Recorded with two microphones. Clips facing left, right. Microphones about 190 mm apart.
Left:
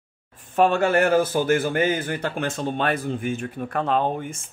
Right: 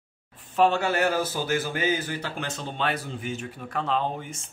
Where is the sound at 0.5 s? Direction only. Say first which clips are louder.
Left 4 dB; 50° left (ahead or behind).